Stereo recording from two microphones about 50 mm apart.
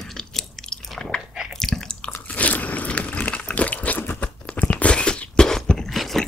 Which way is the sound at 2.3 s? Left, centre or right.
Left.